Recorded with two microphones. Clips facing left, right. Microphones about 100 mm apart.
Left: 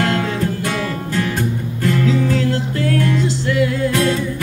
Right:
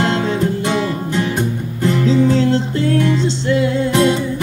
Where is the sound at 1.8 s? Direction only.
25° right (ahead or behind).